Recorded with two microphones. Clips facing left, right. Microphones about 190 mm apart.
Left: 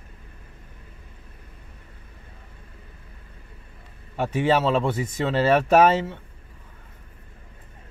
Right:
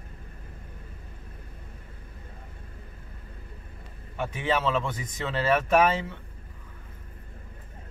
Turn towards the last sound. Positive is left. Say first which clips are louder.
# left 5 dB
turn(degrees=30)  # may be behind; listen again after turning